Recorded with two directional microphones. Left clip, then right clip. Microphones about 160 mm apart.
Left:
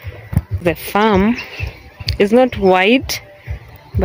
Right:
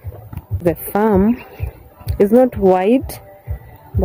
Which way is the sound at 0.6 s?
25° right (ahead or behind).